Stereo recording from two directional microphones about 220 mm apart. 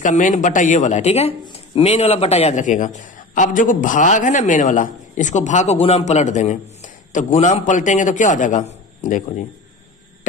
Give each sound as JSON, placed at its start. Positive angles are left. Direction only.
{"t": 0.0, "sound": "speech", "side_deg": 35}